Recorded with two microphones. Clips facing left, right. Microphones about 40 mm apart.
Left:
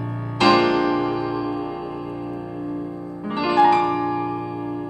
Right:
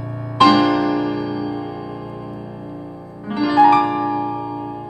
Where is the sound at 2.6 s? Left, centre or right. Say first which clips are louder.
Left 4 dB; centre.